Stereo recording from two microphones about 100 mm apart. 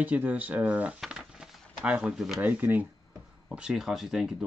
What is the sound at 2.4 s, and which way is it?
Speech, 15° right (ahead or behind).